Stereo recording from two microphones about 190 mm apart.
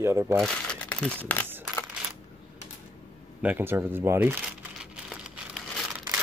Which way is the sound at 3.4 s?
10° right (ahead or behind).